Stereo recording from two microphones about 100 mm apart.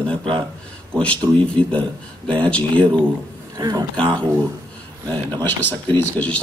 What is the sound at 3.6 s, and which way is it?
Speech, 40° right (ahead or behind).